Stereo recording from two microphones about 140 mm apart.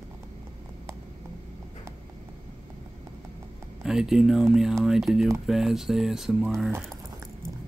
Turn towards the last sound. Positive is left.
turn(degrees=0)  # may be behind; listen again after turning